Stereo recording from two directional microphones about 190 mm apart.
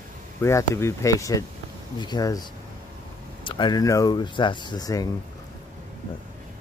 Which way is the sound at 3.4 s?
25° left (ahead or behind).